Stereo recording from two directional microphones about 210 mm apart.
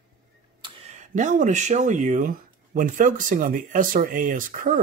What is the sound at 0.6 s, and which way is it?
Speech, 35° right (ahead or behind).